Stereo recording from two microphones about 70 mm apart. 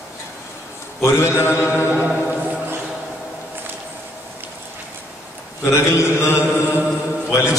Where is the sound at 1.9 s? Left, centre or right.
Right.